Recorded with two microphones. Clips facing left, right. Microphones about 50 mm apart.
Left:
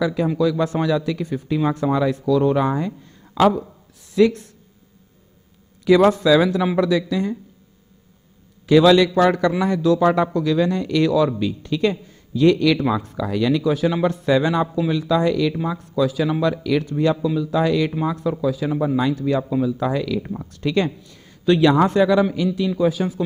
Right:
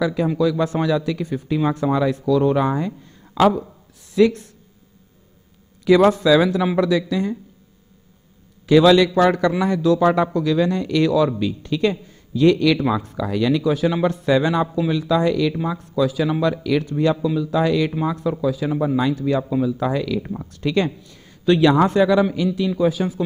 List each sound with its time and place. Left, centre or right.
0.0 s a man's voice: centre
5.9 s a man's voice: centre
8.6 s a man's voice: centre